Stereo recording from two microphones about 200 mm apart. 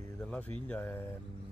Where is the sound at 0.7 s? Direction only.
10° left (ahead or behind).